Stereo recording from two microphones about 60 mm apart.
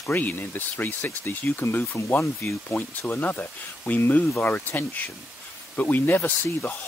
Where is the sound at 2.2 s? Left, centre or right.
Left.